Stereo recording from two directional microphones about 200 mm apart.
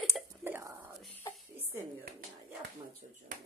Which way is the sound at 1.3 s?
20° left (ahead or behind).